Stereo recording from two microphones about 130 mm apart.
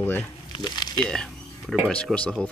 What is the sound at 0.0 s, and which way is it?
Speech, 15° left (ahead or behind).